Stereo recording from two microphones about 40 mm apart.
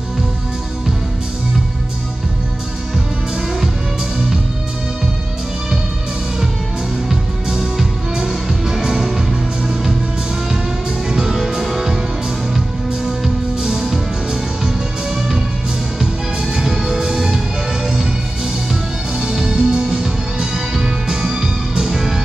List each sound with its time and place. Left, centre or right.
7.1 s music: centre
11.1 s music: centre
19.1 s music: centre